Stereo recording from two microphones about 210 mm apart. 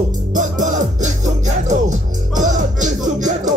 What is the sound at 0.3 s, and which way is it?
Music, 35° right (ahead or behind).